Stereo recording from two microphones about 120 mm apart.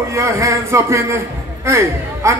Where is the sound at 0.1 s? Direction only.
25° right (ahead or behind).